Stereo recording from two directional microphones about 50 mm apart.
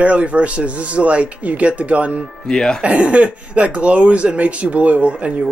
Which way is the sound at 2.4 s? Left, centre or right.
Centre.